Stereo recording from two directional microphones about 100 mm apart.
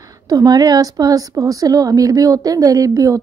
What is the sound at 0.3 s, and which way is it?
A woman's voice, 40° right (ahead or behind).